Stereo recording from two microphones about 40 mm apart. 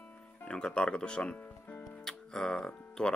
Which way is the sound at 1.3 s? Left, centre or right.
Left.